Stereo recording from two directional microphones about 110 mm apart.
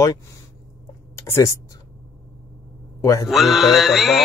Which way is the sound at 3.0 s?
30° left (ahead or behind).